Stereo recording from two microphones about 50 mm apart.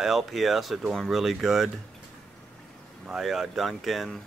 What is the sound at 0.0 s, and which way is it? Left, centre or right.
Speech, centre.